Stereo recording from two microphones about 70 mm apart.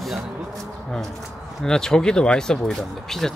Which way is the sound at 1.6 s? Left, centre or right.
Centre.